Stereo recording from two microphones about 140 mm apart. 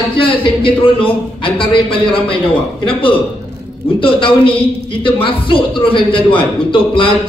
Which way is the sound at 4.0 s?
40° left (ahead or behind).